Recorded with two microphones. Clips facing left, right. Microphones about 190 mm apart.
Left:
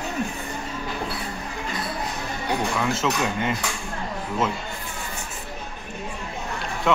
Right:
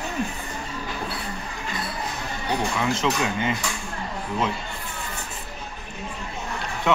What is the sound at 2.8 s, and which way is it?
Speech, centre (ahead or behind).